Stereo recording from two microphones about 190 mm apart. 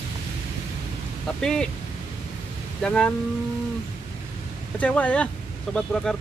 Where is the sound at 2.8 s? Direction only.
5° left (ahead or behind).